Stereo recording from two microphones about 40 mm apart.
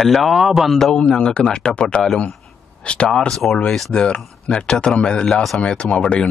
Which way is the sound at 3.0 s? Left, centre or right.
Centre.